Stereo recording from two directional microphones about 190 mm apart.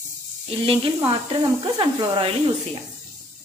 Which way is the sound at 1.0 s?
25° right (ahead or behind).